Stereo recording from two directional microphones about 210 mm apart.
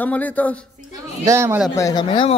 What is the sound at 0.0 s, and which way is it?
Speech, 10° left (ahead or behind).